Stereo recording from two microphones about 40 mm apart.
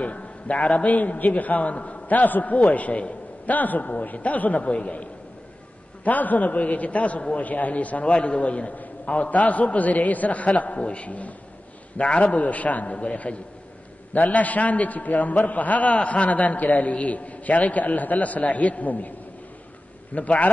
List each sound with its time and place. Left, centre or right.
0.0 s a man's voice: left
6.0 s a man's voice: left
12.0 s a man's voice: left
20.2 s a man's voice: left